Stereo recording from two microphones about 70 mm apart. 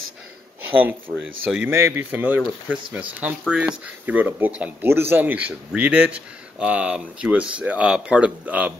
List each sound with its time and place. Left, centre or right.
0.7 s speech: right
4.0 s speech: right
4.8 s speech: right